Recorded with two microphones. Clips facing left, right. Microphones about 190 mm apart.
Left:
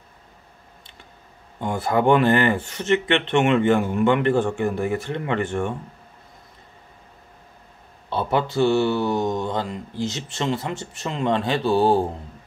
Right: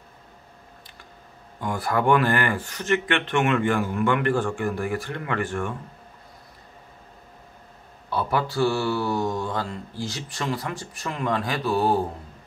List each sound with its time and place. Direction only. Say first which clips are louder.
1.6 s speech: left 3 dB; 25° left (ahead or behind)
8.1 s speech: left 3 dB; 25° left (ahead or behind)